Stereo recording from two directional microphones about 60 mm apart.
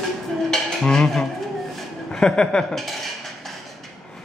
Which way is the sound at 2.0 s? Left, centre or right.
Centre.